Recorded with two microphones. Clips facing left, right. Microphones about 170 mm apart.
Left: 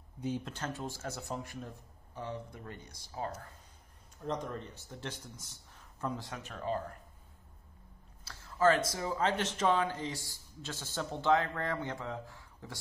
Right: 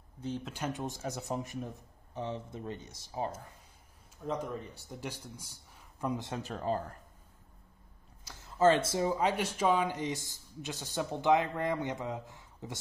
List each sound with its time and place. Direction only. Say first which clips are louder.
0.5 s speech: right 3 dB; 15° right (ahead or behind)
4.2 s speech: right 1 dB; 5° right (ahead or behind)
6.4 s speech: right 1 dB; 35° right (ahead or behind)
8.2 s speech: right 2 dB; 20° right (ahead or behind)